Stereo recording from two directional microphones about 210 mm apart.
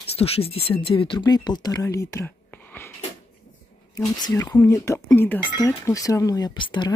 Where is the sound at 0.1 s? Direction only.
30° left (ahead or behind); by 2.9 s 10° left (ahead or behind).